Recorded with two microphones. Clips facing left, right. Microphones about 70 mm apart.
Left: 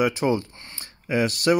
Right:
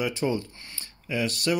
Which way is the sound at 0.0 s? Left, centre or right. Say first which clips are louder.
Left 5 dB; left.